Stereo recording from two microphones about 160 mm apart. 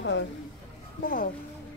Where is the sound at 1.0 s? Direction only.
60° left (ahead or behind).